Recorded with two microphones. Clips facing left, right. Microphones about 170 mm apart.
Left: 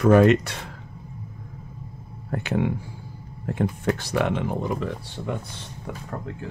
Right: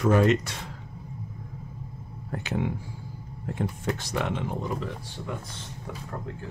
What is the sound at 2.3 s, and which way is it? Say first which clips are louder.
Speech: left 5 dB; 60° left (ahead or behind).